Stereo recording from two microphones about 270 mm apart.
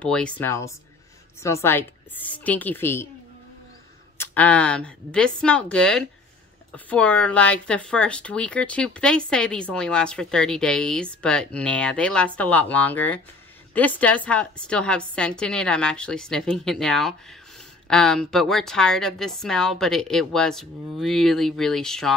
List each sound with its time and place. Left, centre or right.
0.0 s a woman's voice: centre
4.2 s speech: centre